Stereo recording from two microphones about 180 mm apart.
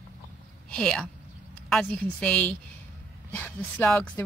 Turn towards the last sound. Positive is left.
turn(degrees=5)  # may be behind; listen again after turning